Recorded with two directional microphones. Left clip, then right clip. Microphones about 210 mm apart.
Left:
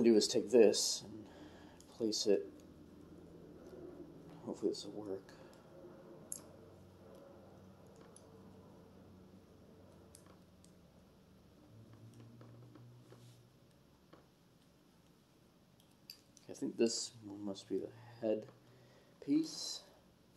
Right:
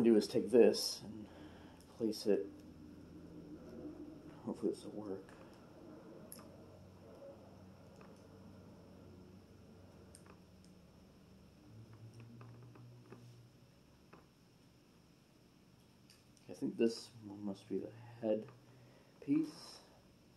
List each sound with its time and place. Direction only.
0.0 s a sound: 25° left (ahead or behind)
4.5 s speech: 20° left (ahead or behind)
16.4 s speech: 20° left (ahead or behind)